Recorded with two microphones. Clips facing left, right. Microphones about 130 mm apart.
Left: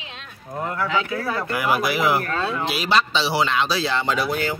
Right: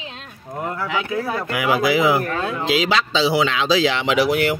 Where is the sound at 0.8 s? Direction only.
20° right (ahead or behind).